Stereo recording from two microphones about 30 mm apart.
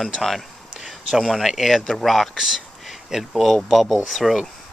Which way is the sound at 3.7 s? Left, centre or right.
Centre.